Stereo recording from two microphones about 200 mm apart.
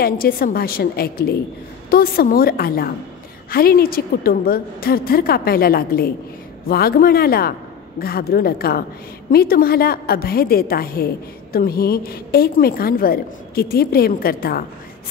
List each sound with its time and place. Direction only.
0.0 s a woman's voice: 45° left (ahead or behind)